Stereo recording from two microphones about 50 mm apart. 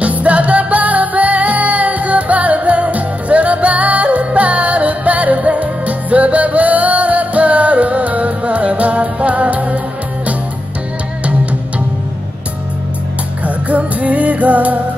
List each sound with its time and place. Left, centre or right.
0.0 s music: right
13.4 s music: right